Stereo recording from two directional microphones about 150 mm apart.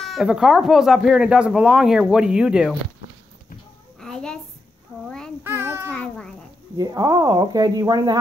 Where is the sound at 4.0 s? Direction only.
5° left (ahead or behind).